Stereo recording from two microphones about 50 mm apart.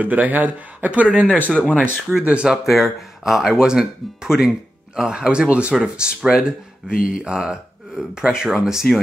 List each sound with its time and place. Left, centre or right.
0.0 s speech: right
1.2 s speech: left
2.2 s speech: right
2.5 s speech: centre